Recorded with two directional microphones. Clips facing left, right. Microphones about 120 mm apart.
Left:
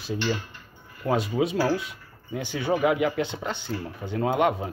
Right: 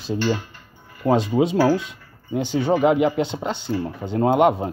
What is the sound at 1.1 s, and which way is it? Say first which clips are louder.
Speech: right 6 dB; 30° right (ahead or behind).